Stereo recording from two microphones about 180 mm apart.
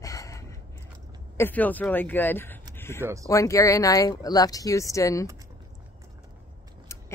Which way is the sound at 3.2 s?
15° left (ahead or behind).